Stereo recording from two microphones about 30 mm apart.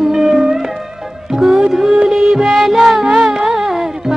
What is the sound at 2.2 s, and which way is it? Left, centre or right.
Music, right.